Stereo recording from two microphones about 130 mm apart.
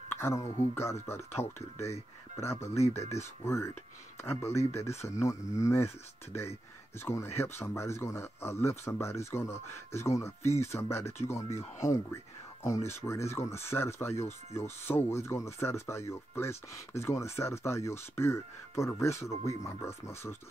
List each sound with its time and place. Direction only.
0.2 s speech: 20° left (ahead or behind)
2.8 s speech: 55° left (ahead or behind)
3.4 s speech: 20° left (ahead or behind)
7.1 s speech: 20° left (ahead or behind)